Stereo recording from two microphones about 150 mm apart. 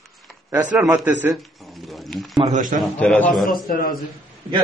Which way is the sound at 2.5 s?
60° right (ahead or behind).